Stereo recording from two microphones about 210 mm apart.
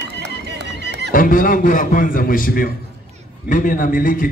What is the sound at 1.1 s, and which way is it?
A man's voice, 40° left (ahead or behind).